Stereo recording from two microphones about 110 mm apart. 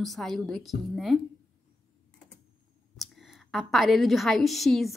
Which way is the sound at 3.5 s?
Centre (ahead or behind).